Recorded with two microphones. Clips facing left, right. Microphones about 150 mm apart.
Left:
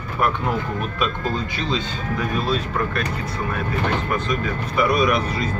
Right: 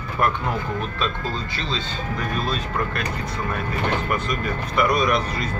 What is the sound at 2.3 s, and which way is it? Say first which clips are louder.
Speech: left 2 dB; 5° left (ahead or behind).